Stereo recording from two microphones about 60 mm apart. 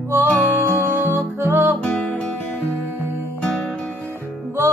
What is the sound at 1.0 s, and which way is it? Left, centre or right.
Music, right.